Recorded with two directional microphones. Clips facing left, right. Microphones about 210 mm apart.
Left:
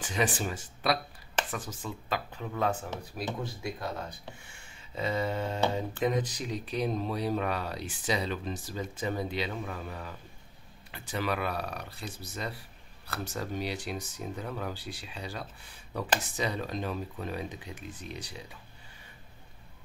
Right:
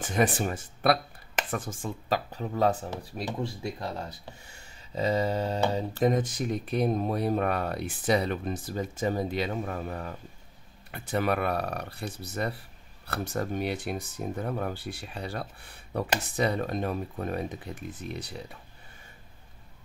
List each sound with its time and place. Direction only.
0.0 s speech: 55° right (ahead or behind); by 3.3 s 30° right (ahead or behind)
4.5 s speech: 40° right (ahead or behind); by 18.6 s 55° right (ahead or behind)